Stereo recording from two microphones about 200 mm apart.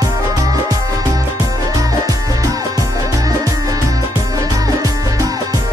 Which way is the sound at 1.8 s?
20° right (ahead or behind).